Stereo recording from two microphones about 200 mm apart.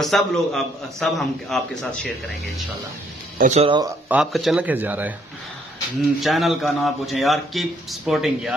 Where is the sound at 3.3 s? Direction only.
35° right (ahead or behind).